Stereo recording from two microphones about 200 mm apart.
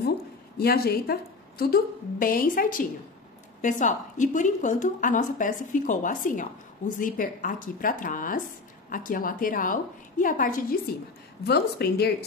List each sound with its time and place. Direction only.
0.6 s a woman's voice: 50° left (ahead or behind)
11.4 s a woman's voice: 55° left (ahead or behind)